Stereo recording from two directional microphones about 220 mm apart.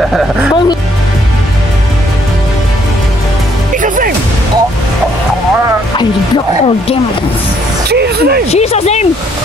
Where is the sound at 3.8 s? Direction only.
35° right (ahead or behind).